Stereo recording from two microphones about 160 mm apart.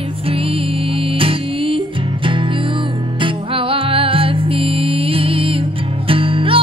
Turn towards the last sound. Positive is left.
turn(degrees=-35)  # may be behind; listen again after turning